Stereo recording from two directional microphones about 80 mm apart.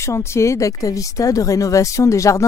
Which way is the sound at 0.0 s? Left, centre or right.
Left.